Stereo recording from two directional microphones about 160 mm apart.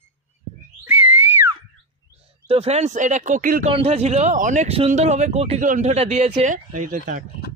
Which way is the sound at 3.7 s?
40° right (ahead or behind).